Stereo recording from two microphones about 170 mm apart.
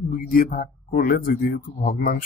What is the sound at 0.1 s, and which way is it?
Speech, 55° left (ahead or behind).